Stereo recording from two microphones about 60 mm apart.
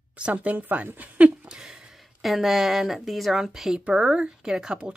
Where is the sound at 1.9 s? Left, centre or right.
Centre.